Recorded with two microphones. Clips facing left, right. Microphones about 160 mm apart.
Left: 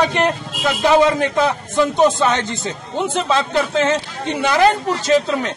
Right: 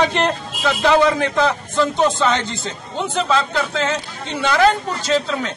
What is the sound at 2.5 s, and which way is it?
Speech, 50° left (ahead or behind).